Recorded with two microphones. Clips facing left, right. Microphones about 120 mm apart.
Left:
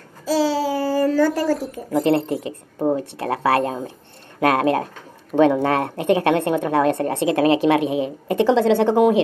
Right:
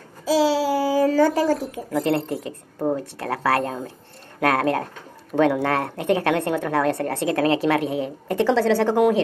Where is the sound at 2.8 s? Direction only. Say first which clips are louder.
Left 3 dB; 15° left (ahead or behind).